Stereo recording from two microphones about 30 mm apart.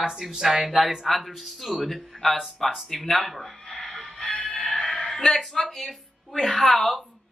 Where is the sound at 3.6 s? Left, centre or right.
Centre.